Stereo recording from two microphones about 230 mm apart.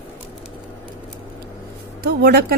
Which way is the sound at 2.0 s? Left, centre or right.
Right.